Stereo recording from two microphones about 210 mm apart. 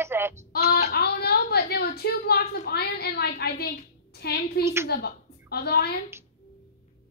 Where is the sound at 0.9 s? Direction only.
50° left (ahead or behind).